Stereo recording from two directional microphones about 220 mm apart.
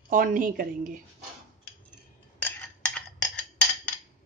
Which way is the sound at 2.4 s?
10° left (ahead or behind).